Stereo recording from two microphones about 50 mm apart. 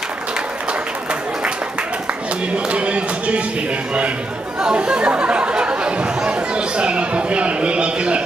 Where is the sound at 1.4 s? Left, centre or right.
Right.